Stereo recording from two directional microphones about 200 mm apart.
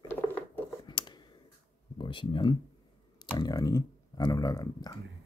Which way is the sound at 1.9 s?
25° left (ahead or behind).